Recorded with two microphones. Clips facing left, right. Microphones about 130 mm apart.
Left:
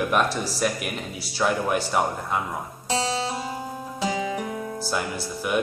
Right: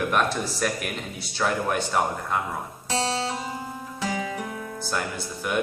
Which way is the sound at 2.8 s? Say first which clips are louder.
Left 1 dB; 15° left (ahead or behind).